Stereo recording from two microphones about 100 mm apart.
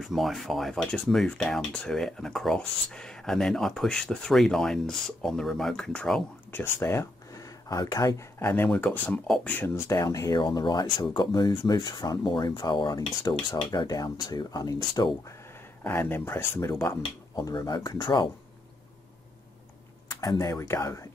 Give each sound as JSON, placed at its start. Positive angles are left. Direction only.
{"t": 0.0, "sound": "speech", "side_deg": 0}
{"t": 6.5, "sound": "speech", "side_deg": 20}
{"t": 7.3, "sound": "speech", "side_deg": 35}
{"t": 8.4, "sound": "speech", "side_deg": 20}
{"t": 10.4, "sound": "speech", "side_deg": 50}
{"t": 15.8, "sound": "speech", "side_deg": 20}
{"t": 20.1, "sound": "speech", "side_deg": 35}